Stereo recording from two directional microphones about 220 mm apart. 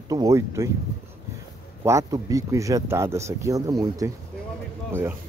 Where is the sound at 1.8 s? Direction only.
15° right (ahead or behind).